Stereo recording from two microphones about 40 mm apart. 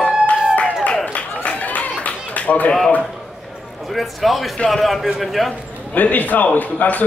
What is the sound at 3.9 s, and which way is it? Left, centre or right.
A man's voice, centre.